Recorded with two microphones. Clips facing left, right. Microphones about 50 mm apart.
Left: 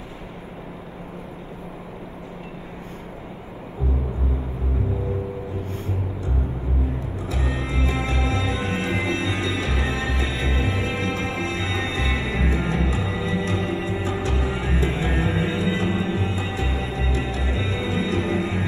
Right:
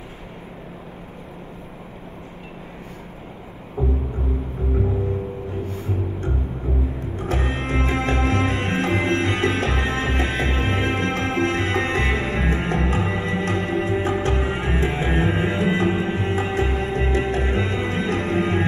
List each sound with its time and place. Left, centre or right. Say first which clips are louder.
7.2 s music: right 5 dB; right